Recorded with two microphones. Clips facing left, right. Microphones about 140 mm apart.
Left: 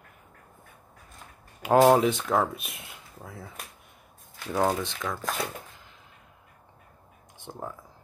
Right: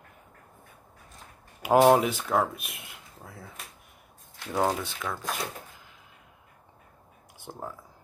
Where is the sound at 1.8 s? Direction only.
5° right (ahead or behind).